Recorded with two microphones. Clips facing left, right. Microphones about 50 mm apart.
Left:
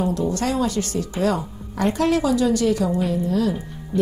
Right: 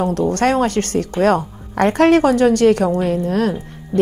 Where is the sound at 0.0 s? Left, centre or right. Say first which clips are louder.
Right 6 dB; right.